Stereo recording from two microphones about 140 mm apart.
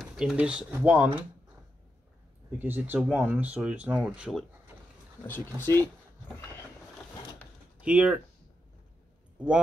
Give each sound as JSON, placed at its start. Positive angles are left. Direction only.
{"t": 0.0, "sound": "speech", "side_deg": -5}
{"t": 2.6, "sound": "speech", "side_deg": -15}
{"t": 5.2, "sound": "speech", "side_deg": 15}
{"t": 7.8, "sound": "speech", "side_deg": -5}